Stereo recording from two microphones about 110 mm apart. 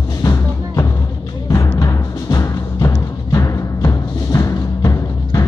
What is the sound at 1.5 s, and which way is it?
Timpani, 30° left (ahead or behind).